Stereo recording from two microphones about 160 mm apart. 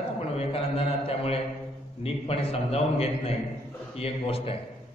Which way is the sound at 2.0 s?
40° left (ahead or behind).